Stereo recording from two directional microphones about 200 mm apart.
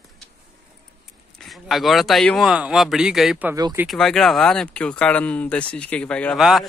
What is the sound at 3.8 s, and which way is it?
Speech, centre (ahead or behind).